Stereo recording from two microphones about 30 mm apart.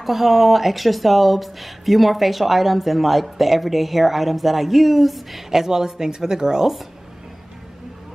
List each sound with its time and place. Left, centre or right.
0.0 s speech: centre
5.5 s speech: centre